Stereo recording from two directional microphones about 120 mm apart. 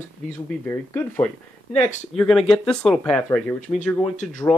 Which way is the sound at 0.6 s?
15° left (ahead or behind).